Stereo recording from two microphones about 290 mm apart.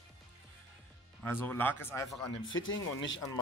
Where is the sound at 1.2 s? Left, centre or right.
Centre.